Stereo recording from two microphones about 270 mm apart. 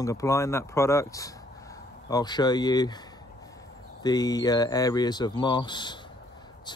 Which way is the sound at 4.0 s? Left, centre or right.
Centre.